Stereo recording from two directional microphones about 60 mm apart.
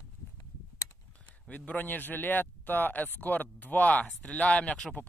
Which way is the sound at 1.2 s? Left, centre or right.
Left.